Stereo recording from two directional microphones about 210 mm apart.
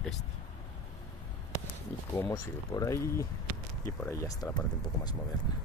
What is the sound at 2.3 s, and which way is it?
Speech, 20° left (ahead or behind).